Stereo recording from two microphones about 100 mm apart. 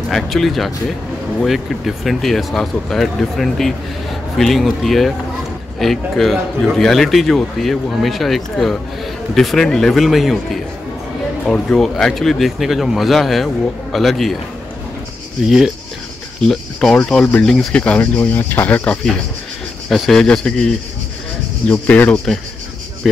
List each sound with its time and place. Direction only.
0.1 s a man's voice: centre (ahead or behind)
15.4 s a man's voice: 5° right (ahead or behind)
16.4 s speech: 5° left (ahead or behind)
19.9 s a man's voice: 5° left (ahead or behind)